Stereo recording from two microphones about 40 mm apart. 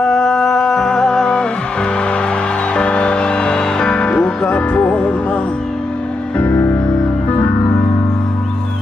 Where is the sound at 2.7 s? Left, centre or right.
Left.